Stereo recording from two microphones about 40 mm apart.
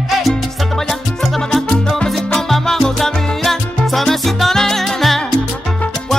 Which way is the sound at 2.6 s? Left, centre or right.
Centre.